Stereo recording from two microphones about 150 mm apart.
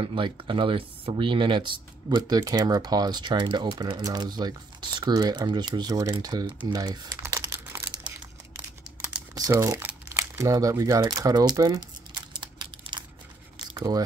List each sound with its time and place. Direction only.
0.0 s speech: 35° right (ahead or behind)
6.7 s crumpling: 25° right (ahead or behind)
9.4 s speech: 20° right (ahead or behind)
10.1 s crumpling: 20° right (ahead or behind)
13.6 s a sound: 25° right (ahead or behind)